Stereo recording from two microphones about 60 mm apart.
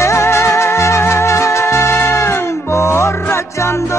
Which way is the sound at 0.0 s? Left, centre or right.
Left.